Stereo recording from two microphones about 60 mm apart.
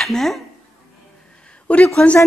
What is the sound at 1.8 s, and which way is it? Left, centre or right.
Speech, centre.